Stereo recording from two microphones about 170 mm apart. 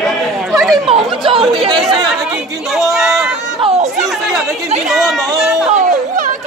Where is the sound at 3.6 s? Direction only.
40° right (ahead or behind).